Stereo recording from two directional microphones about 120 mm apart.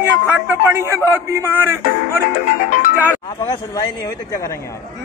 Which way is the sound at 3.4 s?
30° left (ahead or behind).